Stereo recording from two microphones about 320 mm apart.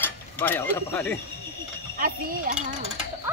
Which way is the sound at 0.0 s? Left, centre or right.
Centre.